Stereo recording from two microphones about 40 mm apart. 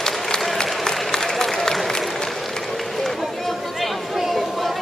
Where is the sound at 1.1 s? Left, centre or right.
Centre.